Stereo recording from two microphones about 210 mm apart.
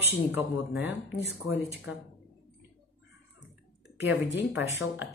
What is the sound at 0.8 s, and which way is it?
Speech, 60° left (ahead or behind).